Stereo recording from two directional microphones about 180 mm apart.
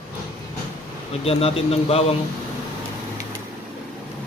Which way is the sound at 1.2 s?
35° left (ahead or behind).